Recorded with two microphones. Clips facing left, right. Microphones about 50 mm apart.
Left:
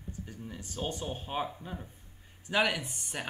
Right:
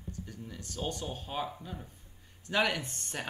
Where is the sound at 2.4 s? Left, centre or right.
Centre.